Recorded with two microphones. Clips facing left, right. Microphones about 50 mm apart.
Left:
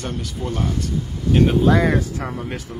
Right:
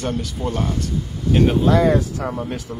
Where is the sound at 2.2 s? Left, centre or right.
Left.